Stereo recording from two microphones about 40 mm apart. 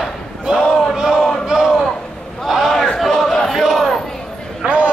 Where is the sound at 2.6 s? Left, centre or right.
Centre.